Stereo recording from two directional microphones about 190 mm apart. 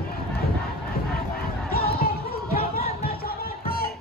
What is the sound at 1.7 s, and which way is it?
Music, 50° left (ahead or behind).